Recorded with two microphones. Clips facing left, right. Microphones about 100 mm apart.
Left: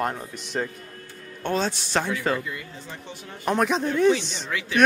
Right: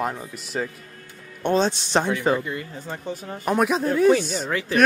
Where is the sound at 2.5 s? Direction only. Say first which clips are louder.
Right 5 dB; 40° right (ahead or behind).